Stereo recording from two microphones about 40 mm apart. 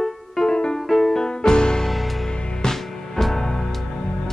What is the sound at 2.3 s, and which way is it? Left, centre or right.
Music, left.